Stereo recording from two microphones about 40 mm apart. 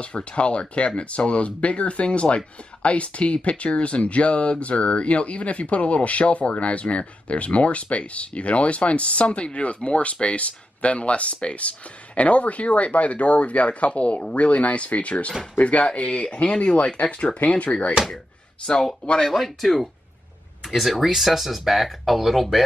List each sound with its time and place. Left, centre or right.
0.0 s speech: left
19.2 s speech: centre